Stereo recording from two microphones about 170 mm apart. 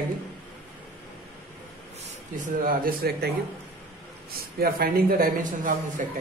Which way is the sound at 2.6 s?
55° right (ahead or behind).